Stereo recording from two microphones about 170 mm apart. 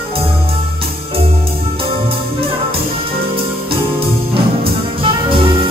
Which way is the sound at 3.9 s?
35° right (ahead or behind).